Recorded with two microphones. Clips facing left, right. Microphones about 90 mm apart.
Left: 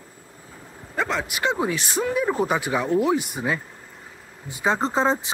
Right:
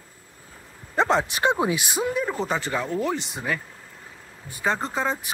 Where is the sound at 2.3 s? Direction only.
10° left (ahead or behind).